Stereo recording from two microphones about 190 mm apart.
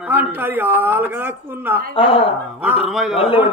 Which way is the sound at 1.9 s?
30° left (ahead or behind).